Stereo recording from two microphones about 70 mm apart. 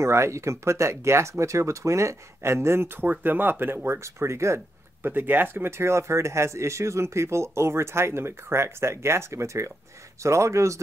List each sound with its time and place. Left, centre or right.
0.0 s speech: right
5.0 s speech: right